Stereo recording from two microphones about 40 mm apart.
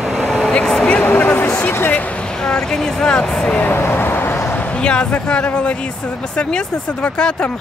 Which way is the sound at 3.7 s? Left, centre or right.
Left.